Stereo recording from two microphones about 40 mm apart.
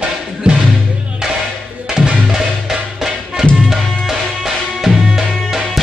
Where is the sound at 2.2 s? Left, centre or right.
Centre.